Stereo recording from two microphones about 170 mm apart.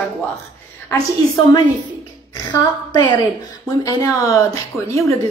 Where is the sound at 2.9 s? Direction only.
25° left (ahead or behind).